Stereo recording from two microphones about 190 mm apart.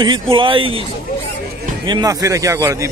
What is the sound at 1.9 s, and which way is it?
Speech, 20° right (ahead or behind).